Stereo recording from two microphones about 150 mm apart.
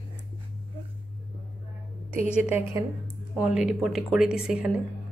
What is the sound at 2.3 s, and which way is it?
A woman's voice, 5° right (ahead or behind).